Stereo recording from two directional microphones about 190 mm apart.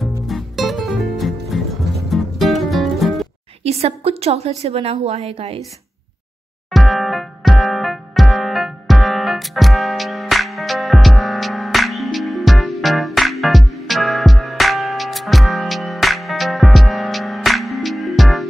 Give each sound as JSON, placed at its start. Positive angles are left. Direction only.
{"t": 0.3, "sound": "music", "side_deg": 0}
{"t": 3.6, "sound": "a woman's voice", "side_deg": -35}
{"t": 6.7, "sound": "music", "side_deg": 0}